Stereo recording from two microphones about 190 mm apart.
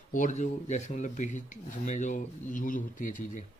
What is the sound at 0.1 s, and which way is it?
Speech, 40° left (ahead or behind).